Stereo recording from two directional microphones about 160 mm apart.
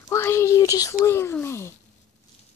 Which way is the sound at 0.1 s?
15° left (ahead or behind).